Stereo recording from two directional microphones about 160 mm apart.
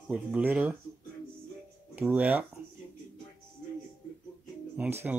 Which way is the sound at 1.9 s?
10° right (ahead or behind).